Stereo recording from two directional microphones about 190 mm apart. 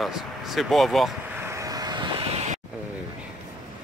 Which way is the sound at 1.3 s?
15° right (ahead or behind).